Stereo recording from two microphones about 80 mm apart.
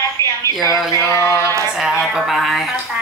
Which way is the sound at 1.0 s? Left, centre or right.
Left.